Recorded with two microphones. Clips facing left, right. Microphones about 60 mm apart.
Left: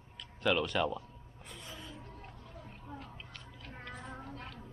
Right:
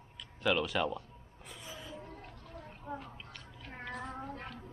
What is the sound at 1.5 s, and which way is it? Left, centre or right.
Gasp, centre.